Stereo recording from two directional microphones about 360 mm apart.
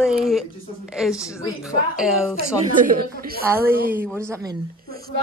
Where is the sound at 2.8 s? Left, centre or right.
Right.